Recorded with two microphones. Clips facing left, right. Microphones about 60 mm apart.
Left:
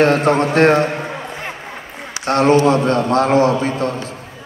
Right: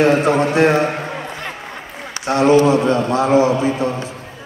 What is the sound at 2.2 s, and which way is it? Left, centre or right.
A man's voice, left.